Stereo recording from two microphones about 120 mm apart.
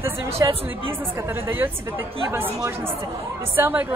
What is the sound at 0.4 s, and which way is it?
Speech, 30° right (ahead or behind).